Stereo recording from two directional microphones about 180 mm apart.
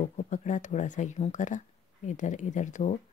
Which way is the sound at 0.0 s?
45° left (ahead or behind).